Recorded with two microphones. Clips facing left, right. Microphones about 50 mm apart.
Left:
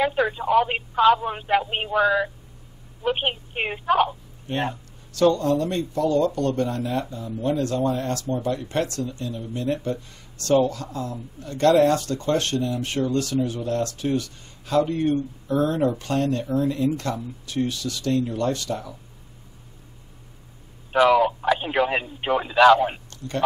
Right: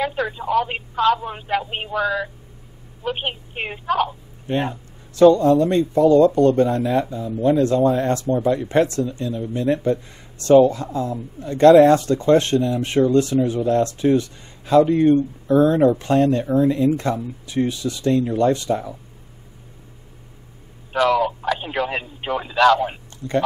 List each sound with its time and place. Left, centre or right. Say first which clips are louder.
0.0 s speech: left 1 dB; centre
5.3 s speech: right 7 dB; right
20.9 s speech: left 1 dB; centre